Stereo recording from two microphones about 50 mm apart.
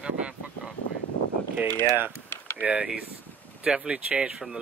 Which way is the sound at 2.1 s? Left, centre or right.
Left.